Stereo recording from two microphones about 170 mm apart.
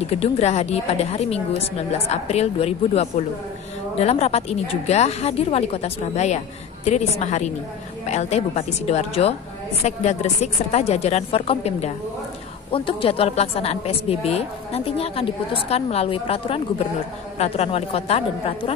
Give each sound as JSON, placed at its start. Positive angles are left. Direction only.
{"t": 0.0, "sound": "a woman's voice", "side_deg": 35}